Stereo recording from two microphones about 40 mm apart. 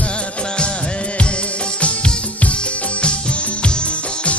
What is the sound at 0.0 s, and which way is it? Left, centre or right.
Music, left.